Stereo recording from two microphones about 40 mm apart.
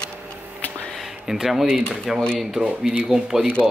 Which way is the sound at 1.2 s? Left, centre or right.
Centre.